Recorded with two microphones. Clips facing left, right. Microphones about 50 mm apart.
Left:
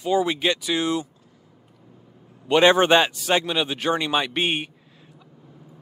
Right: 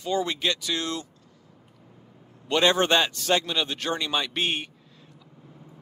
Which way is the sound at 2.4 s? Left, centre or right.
Left.